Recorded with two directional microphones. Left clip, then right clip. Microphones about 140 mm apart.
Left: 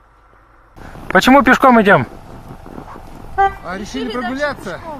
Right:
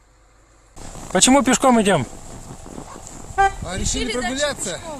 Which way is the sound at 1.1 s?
5° right (ahead or behind).